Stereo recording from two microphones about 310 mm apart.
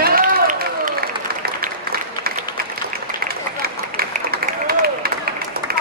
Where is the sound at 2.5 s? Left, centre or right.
Right.